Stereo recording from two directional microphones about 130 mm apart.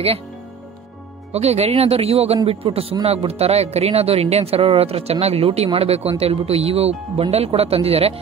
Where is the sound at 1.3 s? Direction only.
55° right (ahead or behind).